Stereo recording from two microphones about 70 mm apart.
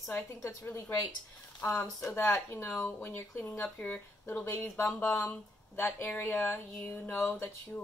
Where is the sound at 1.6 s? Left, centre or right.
Left.